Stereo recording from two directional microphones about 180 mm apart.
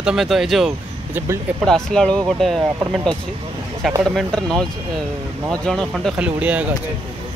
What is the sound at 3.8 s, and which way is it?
Speech, centre (ahead or behind).